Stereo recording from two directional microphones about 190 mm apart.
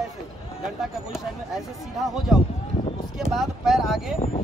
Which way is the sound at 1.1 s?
Centre (ahead or behind).